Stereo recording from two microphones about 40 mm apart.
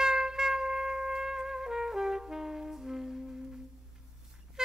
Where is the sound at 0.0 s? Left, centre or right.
Centre.